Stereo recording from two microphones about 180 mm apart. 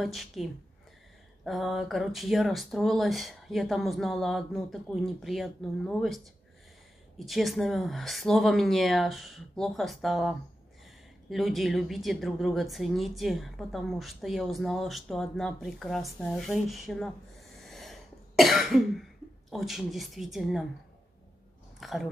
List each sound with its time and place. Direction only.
0.0 s a woman's voice: centre (ahead or behind)
17.6 s cough: centre (ahead or behind)
19.5 s a woman's voice: centre (ahead or behind)
21.7 s speech: centre (ahead or behind)